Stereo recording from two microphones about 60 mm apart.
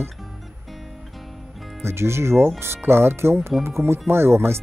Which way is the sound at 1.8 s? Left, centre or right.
Right.